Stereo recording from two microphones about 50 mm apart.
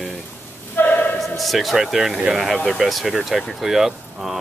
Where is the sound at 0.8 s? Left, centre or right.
Left.